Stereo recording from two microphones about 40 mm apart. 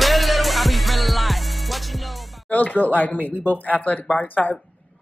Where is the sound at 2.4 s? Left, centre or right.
Left.